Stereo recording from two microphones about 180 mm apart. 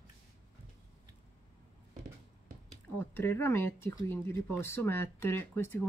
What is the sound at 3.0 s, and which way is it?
Speech, 10° left (ahead or behind).